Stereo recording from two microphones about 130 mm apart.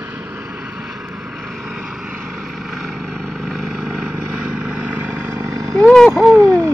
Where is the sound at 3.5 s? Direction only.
5° left (ahead or behind).